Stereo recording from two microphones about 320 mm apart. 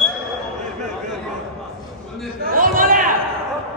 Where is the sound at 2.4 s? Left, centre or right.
Right.